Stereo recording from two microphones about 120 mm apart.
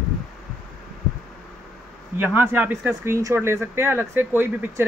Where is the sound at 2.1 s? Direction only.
15° right (ahead or behind).